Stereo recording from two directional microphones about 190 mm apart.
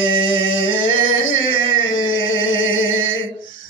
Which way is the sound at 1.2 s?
90° left.